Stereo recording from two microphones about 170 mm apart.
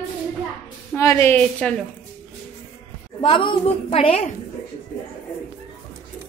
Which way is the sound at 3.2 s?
30° left (ahead or behind).